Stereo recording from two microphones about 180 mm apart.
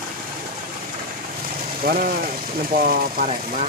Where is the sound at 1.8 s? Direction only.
55° right (ahead or behind).